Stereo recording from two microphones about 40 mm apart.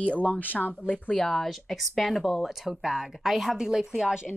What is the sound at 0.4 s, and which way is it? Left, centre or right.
Speech, left.